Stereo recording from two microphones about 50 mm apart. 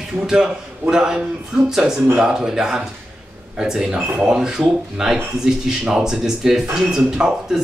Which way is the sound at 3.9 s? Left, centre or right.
Right.